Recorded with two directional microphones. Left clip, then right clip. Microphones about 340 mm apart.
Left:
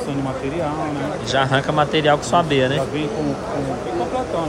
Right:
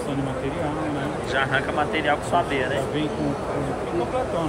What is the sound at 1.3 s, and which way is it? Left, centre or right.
Speech, centre.